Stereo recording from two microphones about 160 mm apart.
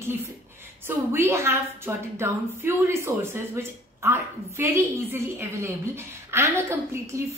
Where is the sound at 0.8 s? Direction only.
15° right (ahead or behind).